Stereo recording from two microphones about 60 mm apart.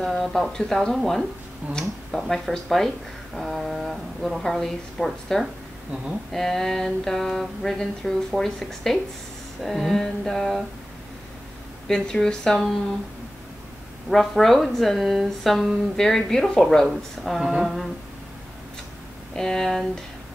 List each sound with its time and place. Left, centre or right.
0.0 s speech: centre
11.9 s speech: centre
14.0 s speech: centre
19.3 s speech: centre